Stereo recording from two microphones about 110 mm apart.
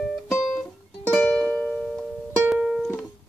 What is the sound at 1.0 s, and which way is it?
Music, 10° left (ahead or behind).